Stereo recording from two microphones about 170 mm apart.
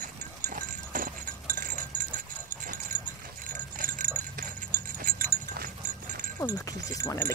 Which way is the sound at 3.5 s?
50° right (ahead or behind).